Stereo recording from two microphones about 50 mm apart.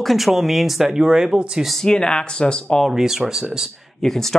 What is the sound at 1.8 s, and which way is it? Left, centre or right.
Speech, centre.